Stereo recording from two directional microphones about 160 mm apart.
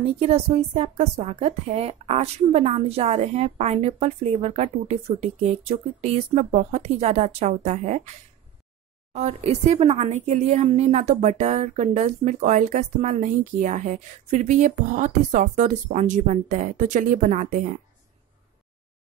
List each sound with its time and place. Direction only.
0.0 s a woman's voice: 40° right (ahead or behind)
9.1 s speech: 45° right (ahead or behind)